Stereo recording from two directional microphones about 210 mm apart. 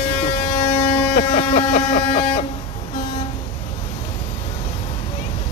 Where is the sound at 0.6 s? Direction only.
25° left (ahead or behind).